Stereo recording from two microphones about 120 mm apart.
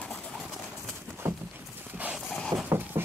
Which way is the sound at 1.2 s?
15° right (ahead or behind).